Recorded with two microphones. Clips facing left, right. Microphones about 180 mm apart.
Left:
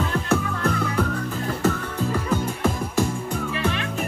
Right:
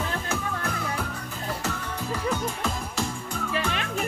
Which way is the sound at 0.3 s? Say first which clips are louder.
Left 7 dB; 60° left (ahead or behind).